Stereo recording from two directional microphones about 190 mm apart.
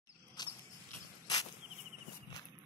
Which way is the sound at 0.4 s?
20° left (ahead or behind).